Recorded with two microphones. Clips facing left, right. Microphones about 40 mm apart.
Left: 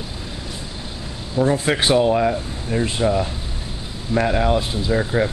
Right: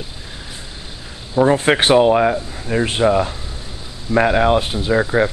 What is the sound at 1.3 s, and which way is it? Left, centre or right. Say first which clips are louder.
Speech: right 5 dB; right.